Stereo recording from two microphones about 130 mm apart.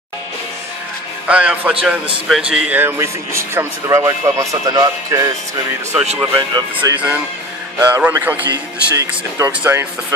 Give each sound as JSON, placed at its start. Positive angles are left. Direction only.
{"t": 1.2, "sound": "a man's voice", "side_deg": -10}
{"t": 2.5, "sound": "speech", "side_deg": -15}
{"t": 6.3, "sound": "speech", "side_deg": -30}
{"t": 7.9, "sound": "a man's voice", "side_deg": -15}
{"t": 8.5, "sound": "speech", "side_deg": -25}
{"t": 9.5, "sound": "a man's voice", "side_deg": -10}